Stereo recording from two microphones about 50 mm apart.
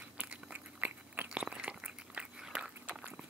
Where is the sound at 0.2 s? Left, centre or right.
Right.